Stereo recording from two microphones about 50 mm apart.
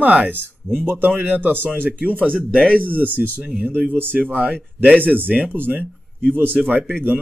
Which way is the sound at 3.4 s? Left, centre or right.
Right.